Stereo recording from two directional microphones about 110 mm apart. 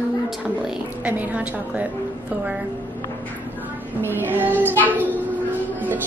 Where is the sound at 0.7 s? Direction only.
15° right (ahead or behind).